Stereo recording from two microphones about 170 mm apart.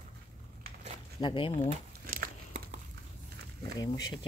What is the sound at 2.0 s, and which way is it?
Biting, 55° right (ahead or behind).